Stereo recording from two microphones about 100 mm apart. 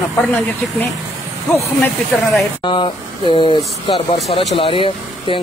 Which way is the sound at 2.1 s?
Centre (ahead or behind).